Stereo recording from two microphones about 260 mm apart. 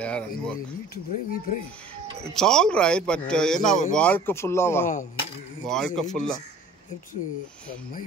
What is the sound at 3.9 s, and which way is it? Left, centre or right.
Chopping, centre.